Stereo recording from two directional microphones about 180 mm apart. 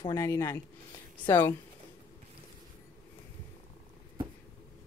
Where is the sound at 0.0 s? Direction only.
15° left (ahead or behind).